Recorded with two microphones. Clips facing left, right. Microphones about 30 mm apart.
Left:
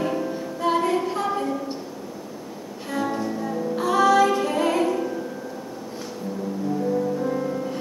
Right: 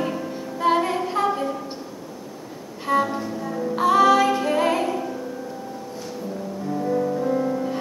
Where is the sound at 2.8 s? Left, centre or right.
Centre.